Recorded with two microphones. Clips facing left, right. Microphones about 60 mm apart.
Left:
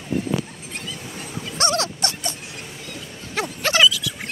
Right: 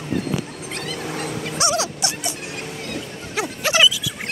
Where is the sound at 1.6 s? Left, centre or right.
Centre.